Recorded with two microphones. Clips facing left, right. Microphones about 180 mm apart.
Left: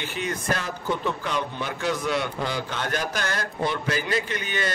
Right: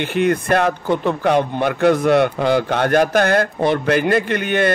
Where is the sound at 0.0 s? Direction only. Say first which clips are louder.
Right 12 dB; 60° right (ahead or behind).